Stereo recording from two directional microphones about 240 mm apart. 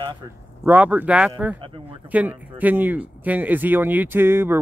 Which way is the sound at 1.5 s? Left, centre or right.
Right.